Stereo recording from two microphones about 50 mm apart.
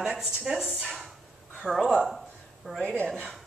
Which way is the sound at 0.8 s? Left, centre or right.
Centre.